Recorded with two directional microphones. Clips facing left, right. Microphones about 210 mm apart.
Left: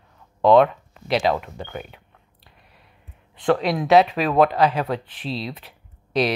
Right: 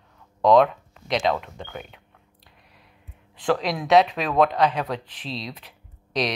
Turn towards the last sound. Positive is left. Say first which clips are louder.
# left 4 dB
turn(degrees=5)  # may be behind; listen again after turning